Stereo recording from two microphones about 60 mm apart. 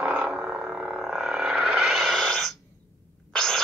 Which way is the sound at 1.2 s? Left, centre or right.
Centre.